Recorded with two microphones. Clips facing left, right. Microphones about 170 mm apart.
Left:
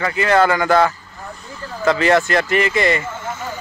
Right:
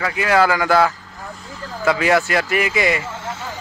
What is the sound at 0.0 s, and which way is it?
A man's voice, 5° right (ahead or behind).